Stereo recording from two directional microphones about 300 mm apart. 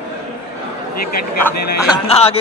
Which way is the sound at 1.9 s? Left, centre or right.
Centre.